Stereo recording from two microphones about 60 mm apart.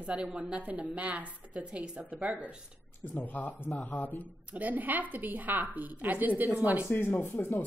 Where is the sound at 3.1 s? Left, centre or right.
Left.